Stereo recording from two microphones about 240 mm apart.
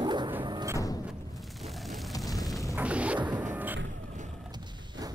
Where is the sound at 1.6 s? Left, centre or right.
Centre.